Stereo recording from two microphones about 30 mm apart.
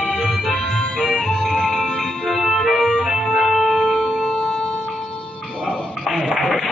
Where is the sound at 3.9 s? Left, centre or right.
Left.